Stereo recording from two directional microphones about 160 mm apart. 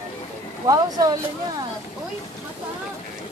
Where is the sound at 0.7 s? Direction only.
25° right (ahead or behind).